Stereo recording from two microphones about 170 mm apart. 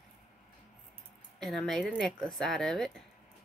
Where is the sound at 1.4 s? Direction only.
Centre (ahead or behind).